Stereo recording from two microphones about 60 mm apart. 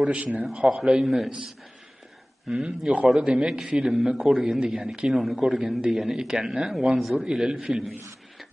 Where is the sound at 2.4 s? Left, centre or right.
Centre.